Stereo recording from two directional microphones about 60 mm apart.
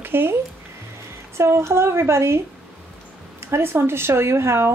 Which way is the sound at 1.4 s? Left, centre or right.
Right.